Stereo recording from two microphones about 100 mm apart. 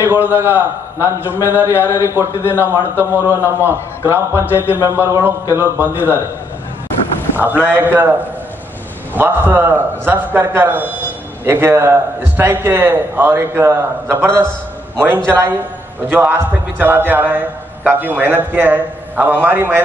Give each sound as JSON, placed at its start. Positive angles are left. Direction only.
{"t": 0.0, "sound": "a man's voice", "side_deg": -20}
{"t": 7.3, "sound": "a man's voice", "side_deg": -20}
{"t": 9.1, "sound": "a man's voice", "side_deg": -20}